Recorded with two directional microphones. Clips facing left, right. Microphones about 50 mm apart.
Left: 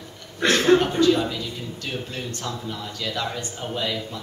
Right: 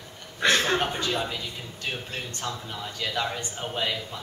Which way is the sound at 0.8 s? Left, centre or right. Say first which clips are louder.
Left 8 dB; centre.